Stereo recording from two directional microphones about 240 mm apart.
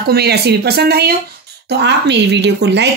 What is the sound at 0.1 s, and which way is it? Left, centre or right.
Speech, right.